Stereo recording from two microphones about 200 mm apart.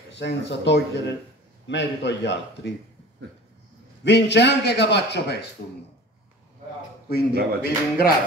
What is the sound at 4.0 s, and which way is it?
A man's voice, 60° left (ahead or behind).